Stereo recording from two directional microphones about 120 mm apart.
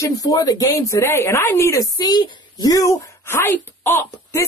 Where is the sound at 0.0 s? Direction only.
30° left (ahead or behind).